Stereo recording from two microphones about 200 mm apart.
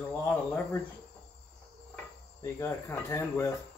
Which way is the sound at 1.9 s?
10° left (ahead or behind).